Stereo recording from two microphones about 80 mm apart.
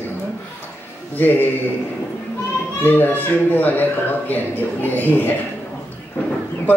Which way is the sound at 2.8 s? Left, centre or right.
Left.